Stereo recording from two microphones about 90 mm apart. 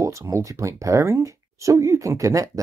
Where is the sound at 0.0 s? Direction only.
35° right (ahead or behind).